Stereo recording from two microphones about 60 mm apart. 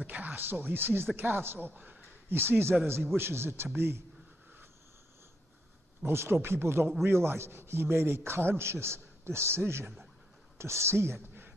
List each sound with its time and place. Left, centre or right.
0.0 s speech: right
2.7 s a man's voice: centre
3.2 s a man's voice: right
6.0 s a man's voice: right